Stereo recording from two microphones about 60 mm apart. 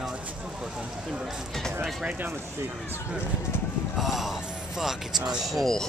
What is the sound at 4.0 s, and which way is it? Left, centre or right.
Speech, centre.